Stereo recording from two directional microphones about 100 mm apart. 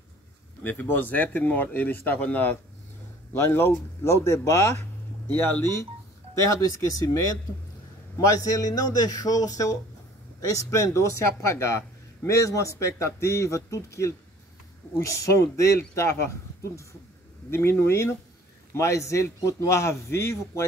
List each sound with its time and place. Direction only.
0.7 s speech: 20° left (ahead or behind)
8.2 s speech: 35° left (ahead or behind)